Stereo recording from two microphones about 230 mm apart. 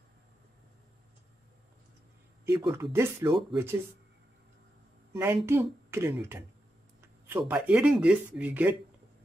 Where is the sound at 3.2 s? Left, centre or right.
Right.